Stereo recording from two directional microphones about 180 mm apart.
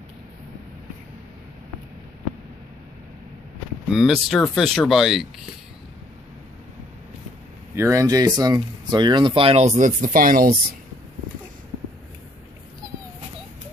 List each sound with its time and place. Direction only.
3.9 s speech: centre (ahead or behind)
7.7 s speech: 15° right (ahead or behind); by 10.5 s 50° right (ahead or behind)